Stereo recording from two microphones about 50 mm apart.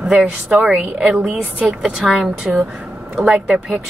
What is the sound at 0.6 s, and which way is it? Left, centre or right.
Speech, right.